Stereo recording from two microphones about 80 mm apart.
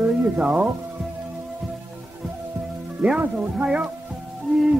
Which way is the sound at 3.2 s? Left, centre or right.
Centre.